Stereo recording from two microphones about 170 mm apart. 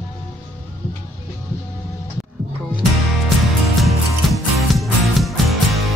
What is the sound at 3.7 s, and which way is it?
Music, centre (ahead or behind).